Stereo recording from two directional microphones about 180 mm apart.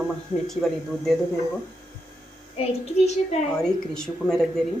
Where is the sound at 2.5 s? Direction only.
40° left (ahead or behind).